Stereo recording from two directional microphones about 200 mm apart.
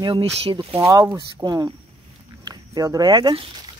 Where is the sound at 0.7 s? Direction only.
15° right (ahead or behind).